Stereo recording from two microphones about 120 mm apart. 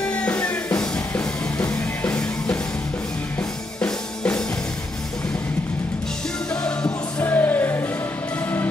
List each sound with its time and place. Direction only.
0.1 s music: 10° left (ahead or behind)
6.5 s music: 5° left (ahead or behind)